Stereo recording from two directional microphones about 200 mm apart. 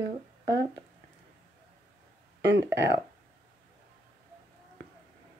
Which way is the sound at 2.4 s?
60° right (ahead or behind).